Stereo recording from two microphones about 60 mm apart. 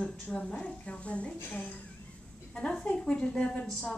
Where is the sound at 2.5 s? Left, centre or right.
Centre.